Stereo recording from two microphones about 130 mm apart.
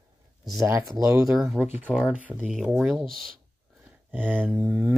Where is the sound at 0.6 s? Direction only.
25° right (ahead or behind).